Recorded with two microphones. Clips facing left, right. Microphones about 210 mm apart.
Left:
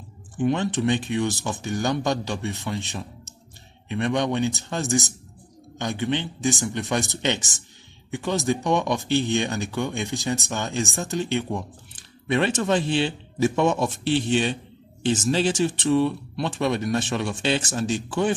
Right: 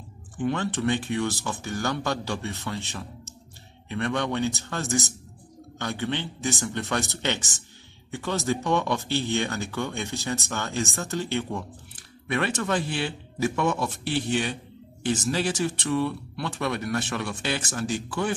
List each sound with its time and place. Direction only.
0.4 s speech: 15° left (ahead or behind)